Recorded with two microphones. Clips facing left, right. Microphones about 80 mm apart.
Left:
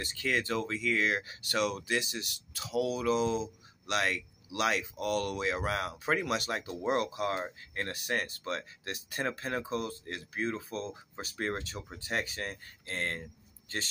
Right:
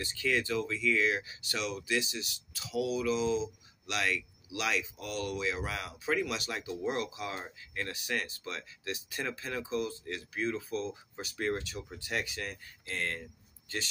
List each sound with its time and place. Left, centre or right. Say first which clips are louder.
0.0 s speech: right 1 dB; left